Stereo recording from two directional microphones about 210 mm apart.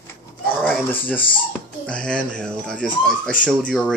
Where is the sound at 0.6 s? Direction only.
10° left (ahead or behind).